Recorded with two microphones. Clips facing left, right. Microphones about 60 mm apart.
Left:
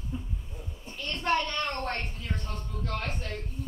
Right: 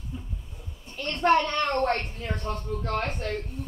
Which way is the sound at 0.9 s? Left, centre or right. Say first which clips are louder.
Right 6 dB; right.